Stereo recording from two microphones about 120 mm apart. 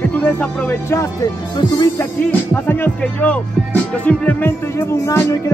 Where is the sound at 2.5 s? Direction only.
15° left (ahead or behind).